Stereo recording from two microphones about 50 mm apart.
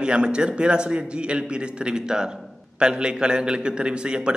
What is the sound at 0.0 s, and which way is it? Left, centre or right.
A man's voice, centre.